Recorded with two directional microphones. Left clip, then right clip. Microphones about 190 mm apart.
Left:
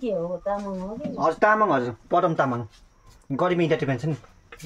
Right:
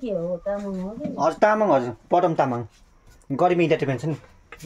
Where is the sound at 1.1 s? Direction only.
20° right (ahead or behind).